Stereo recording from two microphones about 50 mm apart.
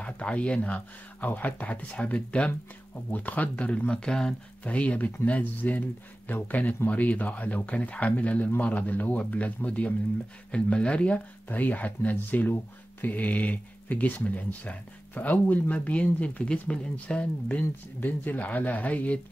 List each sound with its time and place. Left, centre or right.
0.0 s a sound: left
1.2 s speech: left
3.9 s speech: centre
4.6 s speech: left
11.4 s speech: left